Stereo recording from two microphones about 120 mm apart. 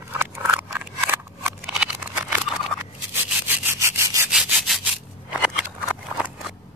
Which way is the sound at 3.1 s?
15° right (ahead or behind).